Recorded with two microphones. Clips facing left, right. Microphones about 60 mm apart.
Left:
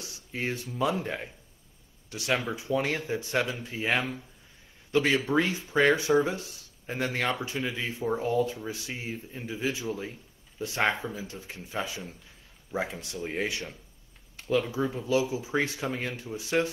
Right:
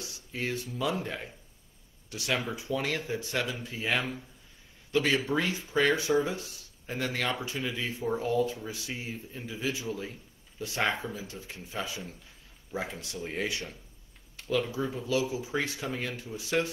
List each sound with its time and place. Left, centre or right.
0.0 s speech: left
14.7 s speech: left